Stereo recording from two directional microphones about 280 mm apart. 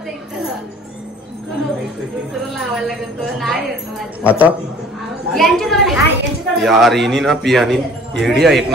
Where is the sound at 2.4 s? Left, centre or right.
Centre.